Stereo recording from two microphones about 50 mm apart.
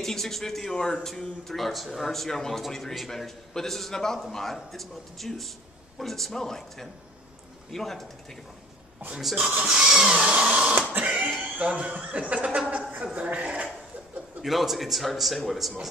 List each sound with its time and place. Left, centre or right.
0.0 s a man's voice: centre
9.7 s a sound: centre
10.2 s printer: centre
10.9 s a sound: right
11.4 s chuckle: right
14.4 s a man's voice: centre